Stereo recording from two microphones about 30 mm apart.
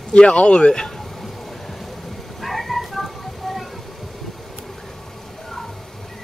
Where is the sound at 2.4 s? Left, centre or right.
Centre.